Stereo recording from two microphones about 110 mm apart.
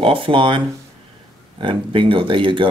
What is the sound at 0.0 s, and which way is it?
Speech, 50° right (ahead or behind).